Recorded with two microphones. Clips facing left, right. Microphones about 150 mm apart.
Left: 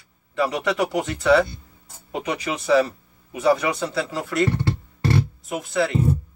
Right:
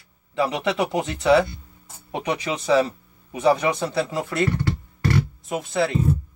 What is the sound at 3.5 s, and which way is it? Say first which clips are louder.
Speech: even; 25° right (ahead or behind).